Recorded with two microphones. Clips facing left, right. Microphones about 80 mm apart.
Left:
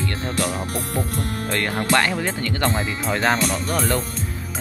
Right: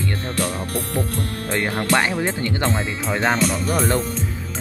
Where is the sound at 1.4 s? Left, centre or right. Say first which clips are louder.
Right 2 dB; centre.